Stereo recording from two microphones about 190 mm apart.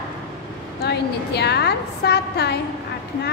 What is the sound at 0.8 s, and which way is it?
A woman's voice, 60° left (ahead or behind).